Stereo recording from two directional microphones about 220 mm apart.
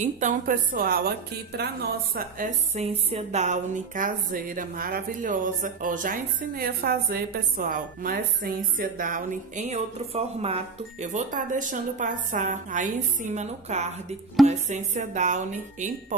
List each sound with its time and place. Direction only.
0.0 s a woman's voice: 35° right (ahead or behind)